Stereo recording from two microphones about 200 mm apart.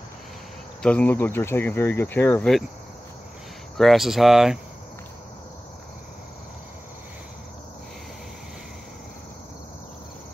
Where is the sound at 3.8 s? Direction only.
Centre (ahead or behind).